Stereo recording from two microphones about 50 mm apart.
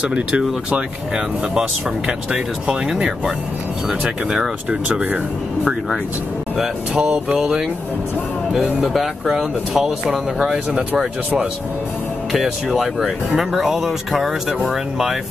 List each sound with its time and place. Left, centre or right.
0.1 s speech: centre
4.6 s speech: right
7.0 s speech: centre
8.8 s speech: centre
12.3 s speech: centre